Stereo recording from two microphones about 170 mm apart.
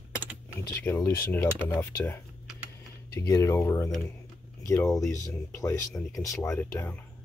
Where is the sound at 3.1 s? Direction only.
15° left (ahead or behind).